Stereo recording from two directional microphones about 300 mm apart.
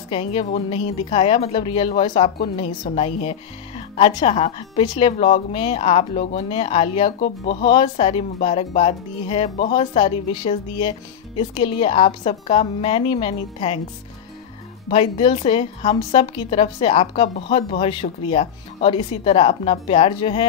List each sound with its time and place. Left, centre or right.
0.1 s speech: centre
14.9 s speech: centre